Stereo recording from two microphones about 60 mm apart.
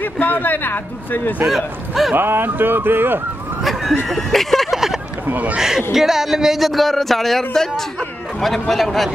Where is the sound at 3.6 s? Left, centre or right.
Centre.